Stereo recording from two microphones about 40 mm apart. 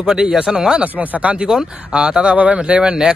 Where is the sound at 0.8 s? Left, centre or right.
Right.